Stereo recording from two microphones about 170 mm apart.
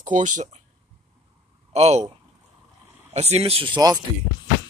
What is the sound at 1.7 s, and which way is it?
Speech, 40° right (ahead or behind).